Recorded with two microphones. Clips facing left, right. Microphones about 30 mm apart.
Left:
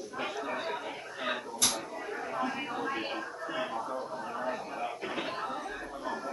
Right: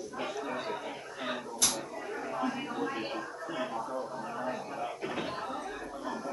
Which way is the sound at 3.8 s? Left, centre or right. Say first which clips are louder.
Even; centre.